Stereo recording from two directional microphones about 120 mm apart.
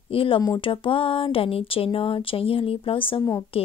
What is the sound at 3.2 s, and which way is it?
Speech, 25° left (ahead or behind).